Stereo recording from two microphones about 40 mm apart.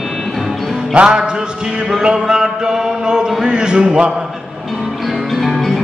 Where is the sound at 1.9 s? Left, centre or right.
Centre.